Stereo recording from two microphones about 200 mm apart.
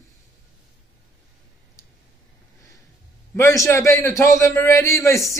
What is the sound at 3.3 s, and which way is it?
A man's voice, 15° left (ahead or behind).